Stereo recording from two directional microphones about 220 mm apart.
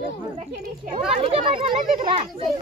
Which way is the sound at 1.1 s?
25° right (ahead or behind).